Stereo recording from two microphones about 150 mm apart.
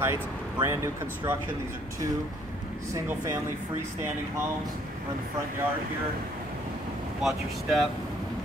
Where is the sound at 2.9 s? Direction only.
20° right (ahead or behind).